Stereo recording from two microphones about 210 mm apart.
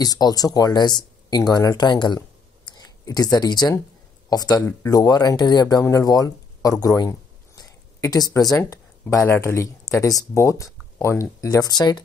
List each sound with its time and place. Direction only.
0.0 s speech: 20° left (ahead or behind)